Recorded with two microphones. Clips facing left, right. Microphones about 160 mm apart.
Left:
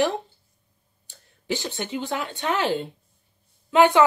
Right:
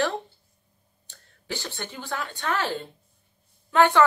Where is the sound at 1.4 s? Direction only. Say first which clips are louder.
Left 6 dB; 15° left (ahead or behind).